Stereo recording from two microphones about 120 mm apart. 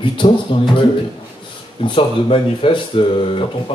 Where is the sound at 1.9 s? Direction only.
45° left (ahead or behind).